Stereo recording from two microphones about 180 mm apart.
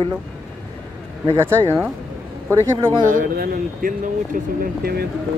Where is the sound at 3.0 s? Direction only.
50° right (ahead or behind).